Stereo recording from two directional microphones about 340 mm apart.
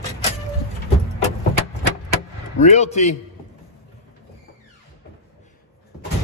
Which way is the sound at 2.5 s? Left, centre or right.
Left.